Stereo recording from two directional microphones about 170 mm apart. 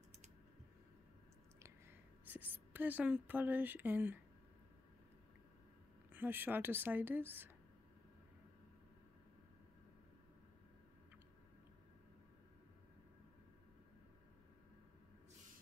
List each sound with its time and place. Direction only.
1.6 s a woman's voice: 10° right (ahead or behind)
6.1 s speech: 10° right (ahead or behind)